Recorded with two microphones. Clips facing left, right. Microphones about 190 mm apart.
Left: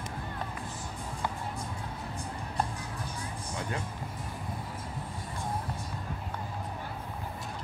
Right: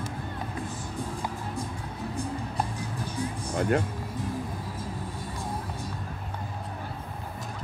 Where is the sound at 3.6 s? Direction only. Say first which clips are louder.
Right 12 dB; 60° right (ahead or behind).